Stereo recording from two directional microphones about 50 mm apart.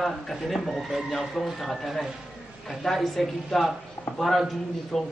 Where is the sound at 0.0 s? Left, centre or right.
Centre.